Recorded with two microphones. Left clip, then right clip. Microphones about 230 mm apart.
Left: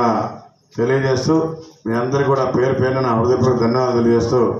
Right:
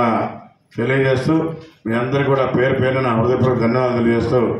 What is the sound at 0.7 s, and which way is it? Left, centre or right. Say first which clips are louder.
A man's voice: even; right.